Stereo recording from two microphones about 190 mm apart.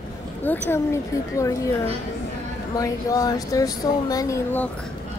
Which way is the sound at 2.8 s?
20° left (ahead or behind).